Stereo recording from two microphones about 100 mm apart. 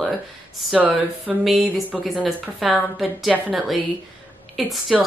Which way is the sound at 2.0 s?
Centre (ahead or behind).